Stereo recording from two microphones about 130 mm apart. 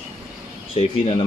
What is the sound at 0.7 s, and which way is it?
Speech, 50° left (ahead or behind).